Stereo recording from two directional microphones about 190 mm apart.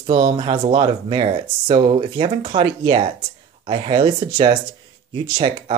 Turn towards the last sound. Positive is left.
turn(degrees=-30)  # may be behind; listen again after turning